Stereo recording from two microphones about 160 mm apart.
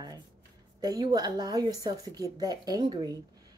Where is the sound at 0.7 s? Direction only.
25° right (ahead or behind).